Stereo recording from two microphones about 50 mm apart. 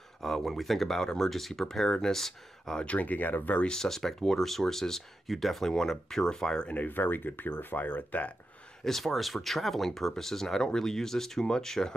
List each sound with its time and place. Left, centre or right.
0.2 s speech: centre
2.8 s speech: left
3.6 s speech: centre
6.7 s speech: left
8.8 s speech: centre